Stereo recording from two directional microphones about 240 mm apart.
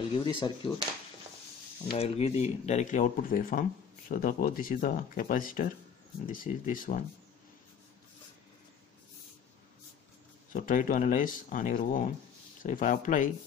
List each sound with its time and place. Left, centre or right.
0.2 s speech: left
1.9 s speech: left
10.5 s speech: left